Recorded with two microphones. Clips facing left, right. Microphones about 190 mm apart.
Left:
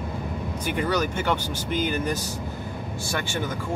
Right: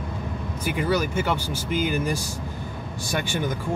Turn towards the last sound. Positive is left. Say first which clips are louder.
# right 1 dB
turn(degrees=-15)  # may be behind; listen again after turning